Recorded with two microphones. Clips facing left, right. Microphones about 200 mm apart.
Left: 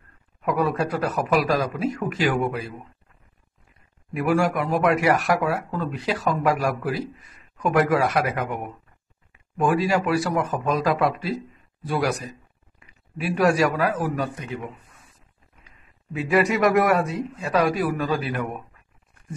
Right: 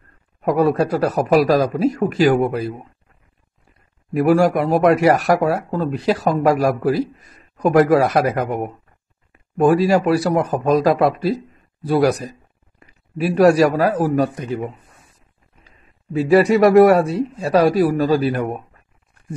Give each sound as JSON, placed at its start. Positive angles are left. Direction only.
{"t": 0.4, "sound": "speech", "side_deg": -40}
{"t": 4.1, "sound": "speech", "side_deg": -35}